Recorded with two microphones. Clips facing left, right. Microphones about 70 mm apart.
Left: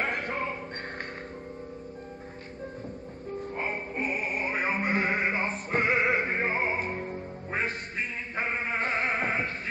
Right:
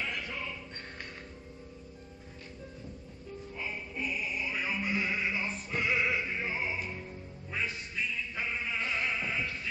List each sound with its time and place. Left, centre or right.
0.0 s music: left
3.3 s music: left